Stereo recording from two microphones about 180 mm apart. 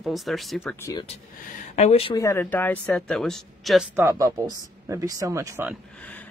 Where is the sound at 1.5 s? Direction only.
35° left (ahead or behind).